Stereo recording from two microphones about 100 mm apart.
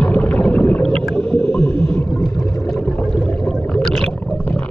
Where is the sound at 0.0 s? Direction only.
15° left (ahead or behind).